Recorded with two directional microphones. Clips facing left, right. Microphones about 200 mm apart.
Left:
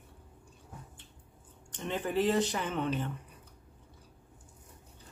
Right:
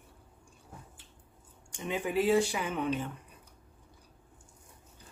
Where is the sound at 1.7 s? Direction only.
10° right (ahead or behind).